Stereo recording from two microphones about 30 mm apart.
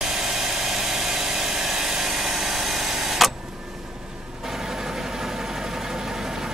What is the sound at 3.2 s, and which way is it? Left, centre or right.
Vehicle, centre.